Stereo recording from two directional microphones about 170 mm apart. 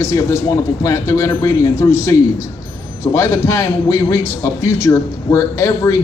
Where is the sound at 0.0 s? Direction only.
15° left (ahead or behind).